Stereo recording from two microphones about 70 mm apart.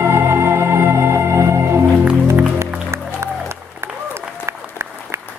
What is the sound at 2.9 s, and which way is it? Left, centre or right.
Music, right.